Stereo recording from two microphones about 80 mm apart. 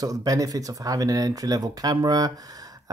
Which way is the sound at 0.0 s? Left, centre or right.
Right.